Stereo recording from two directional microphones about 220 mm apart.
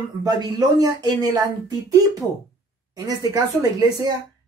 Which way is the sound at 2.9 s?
15° right (ahead or behind).